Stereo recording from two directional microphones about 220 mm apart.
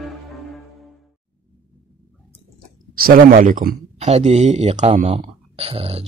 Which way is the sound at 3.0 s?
40° right (ahead or behind).